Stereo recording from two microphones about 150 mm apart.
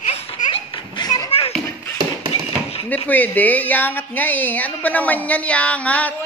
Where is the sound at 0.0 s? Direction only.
45° left (ahead or behind); by 1.3 s 25° left (ahead or behind).